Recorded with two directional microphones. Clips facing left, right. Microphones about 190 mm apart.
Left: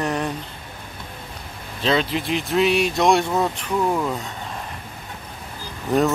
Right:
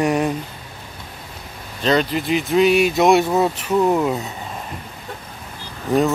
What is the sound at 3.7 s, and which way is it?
Speech, 25° right (ahead or behind).